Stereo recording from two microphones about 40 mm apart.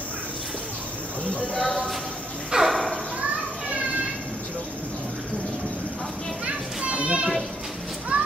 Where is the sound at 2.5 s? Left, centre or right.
Centre.